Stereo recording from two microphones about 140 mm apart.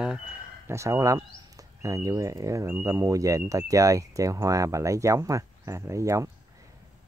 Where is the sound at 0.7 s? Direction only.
20° right (ahead or behind).